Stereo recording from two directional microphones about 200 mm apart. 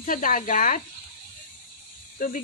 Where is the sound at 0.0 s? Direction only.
40° left (ahead or behind).